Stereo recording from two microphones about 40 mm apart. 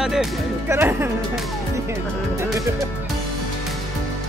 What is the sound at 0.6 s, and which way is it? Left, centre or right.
Speech, right.